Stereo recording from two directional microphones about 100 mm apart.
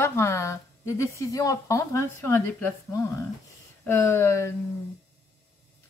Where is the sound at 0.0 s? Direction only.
25° left (ahead or behind).